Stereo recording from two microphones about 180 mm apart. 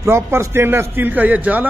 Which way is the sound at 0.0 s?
15° right (ahead or behind).